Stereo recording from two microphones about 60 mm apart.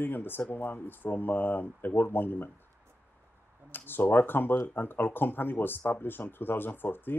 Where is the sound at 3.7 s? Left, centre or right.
Left.